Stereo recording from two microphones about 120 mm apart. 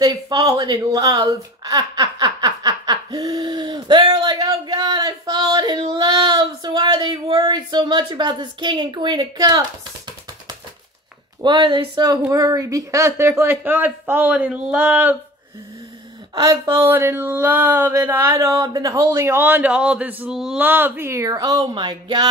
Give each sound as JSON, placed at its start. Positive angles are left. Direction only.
{"t": 0.0, "sound": "a woman's voice", "side_deg": -35}
{"t": 11.4, "sound": "speech", "side_deg": -40}
{"t": 16.3, "sound": "speech", "side_deg": -25}